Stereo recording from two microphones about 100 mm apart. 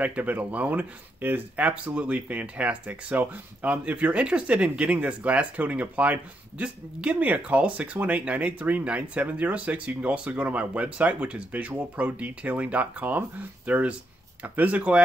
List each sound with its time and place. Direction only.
0.0 s speech: 15° right (ahead or behind)